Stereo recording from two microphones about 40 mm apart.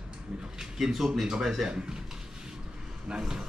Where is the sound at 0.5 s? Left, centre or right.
Centre.